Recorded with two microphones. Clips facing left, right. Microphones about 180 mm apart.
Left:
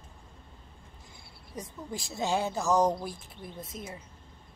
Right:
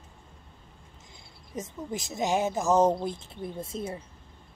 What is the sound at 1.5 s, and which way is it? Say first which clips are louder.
Speech: right 4 dB; 20° right (ahead or behind).